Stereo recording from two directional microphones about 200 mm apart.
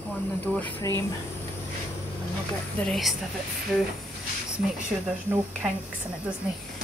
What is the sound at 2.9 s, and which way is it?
Speech, centre (ahead or behind).